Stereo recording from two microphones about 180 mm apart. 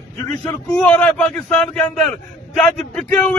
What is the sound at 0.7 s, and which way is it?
A man's voice, 10° left (ahead or behind).